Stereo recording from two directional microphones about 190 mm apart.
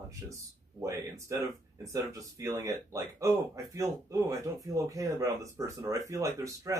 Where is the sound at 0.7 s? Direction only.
15° right (ahead or behind).